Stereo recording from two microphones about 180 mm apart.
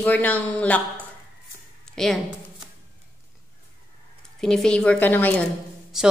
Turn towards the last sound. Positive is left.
turn(degrees=0)  # may be behind; listen again after turning